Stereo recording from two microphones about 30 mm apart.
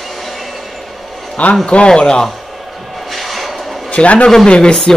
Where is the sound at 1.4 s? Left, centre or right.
Left.